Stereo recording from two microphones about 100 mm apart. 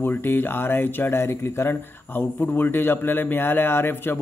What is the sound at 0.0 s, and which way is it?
Speech, 20° left (ahead or behind).